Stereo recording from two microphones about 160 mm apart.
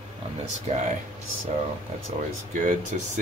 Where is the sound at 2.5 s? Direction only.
55° right (ahead or behind).